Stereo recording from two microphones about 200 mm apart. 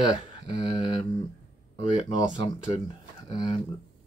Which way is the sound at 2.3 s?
25° left (ahead or behind).